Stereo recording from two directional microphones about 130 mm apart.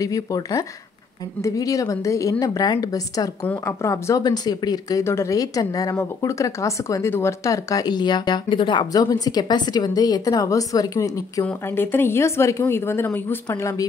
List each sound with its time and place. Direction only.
0.0 s a woman's voice: 25° left (ahead or behind)